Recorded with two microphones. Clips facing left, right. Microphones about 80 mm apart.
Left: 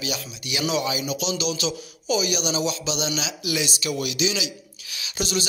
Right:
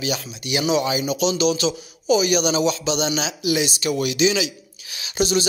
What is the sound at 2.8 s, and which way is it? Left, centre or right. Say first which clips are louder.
Speech: right 5 dB; right.